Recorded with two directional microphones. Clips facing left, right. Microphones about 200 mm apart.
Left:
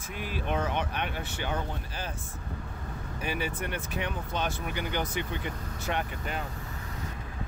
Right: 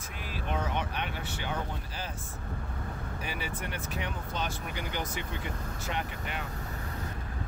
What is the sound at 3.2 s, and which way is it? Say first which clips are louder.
Speech: left 6 dB; 55° left (ahead or behind).